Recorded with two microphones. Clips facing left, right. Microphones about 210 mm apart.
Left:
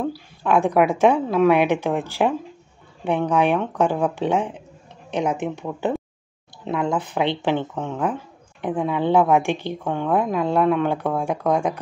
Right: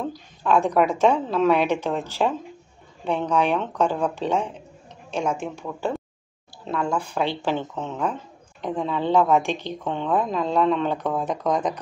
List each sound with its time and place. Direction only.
0.0 s speech: 15° left (ahead or behind)